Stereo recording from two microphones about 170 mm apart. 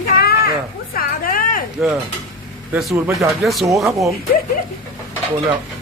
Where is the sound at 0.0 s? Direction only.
65° left (ahead or behind).